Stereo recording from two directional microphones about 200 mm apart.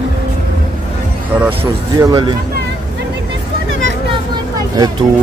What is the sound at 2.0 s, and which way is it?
Speech, 20° right (ahead or behind).